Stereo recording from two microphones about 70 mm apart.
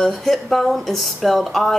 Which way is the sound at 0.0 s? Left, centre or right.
Centre.